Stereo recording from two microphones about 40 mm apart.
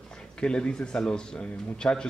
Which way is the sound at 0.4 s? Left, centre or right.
Left.